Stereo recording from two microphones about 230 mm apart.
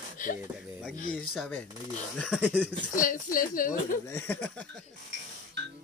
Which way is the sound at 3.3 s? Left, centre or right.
Left.